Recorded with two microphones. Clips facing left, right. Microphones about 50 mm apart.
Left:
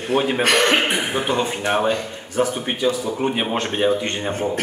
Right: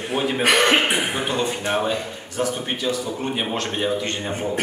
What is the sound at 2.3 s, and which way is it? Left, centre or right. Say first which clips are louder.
Speech: left 3 dB; centre.